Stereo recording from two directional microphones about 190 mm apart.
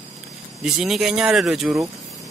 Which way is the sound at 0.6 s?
Centre (ahead or behind).